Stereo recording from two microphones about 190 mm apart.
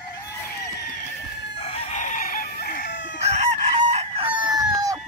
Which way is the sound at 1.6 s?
35° left (ahead or behind).